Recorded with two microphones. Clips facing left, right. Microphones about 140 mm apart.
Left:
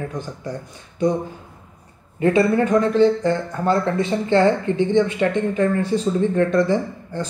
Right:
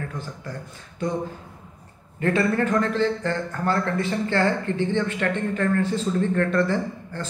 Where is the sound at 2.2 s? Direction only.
15° left (ahead or behind).